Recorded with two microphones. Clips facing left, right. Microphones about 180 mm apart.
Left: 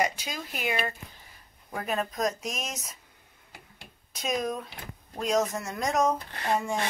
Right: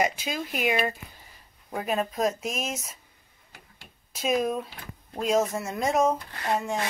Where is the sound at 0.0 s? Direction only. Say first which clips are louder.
Right 3 dB; 10° right (ahead or behind).